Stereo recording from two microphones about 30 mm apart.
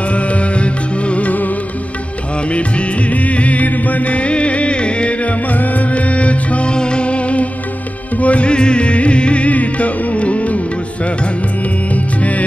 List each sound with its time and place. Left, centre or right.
0.1 s music: left
3.1 s music: left
5.5 s music: left
6.7 s music: left
8.5 s music: left
11.9 s music: left